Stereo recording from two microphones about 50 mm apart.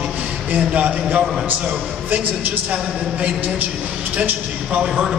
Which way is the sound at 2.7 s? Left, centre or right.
Right.